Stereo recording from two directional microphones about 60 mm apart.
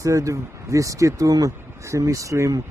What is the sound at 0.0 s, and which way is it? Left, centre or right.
Speech, right.